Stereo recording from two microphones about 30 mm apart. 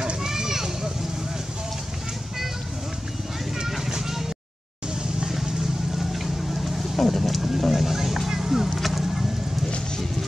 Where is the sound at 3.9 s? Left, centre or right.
Centre.